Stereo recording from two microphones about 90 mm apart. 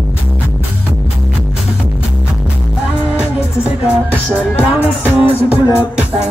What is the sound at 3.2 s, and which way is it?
Music, 10° right (ahead or behind).